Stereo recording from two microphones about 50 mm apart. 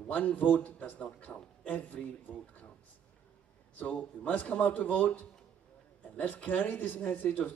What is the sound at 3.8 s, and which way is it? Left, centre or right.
A man's voice, left.